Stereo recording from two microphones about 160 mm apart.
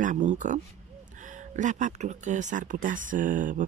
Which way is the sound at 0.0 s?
50° right (ahead or behind).